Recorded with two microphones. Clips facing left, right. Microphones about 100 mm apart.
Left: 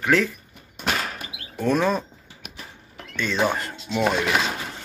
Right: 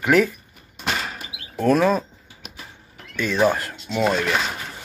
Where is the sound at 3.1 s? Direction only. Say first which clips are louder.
Right 4 dB; 5° right (ahead or behind).